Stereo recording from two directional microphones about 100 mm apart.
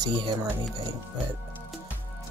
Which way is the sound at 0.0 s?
45° right (ahead or behind).